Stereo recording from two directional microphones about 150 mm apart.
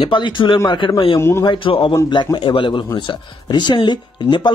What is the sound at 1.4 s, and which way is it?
Speech, 35° left (ahead or behind).